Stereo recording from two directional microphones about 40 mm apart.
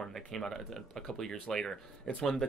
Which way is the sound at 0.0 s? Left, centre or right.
Centre.